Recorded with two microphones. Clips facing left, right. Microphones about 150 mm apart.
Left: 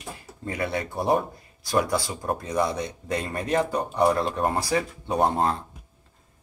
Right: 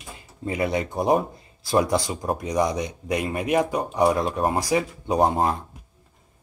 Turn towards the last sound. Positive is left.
turn(degrees=-15)  # may be behind; listen again after turning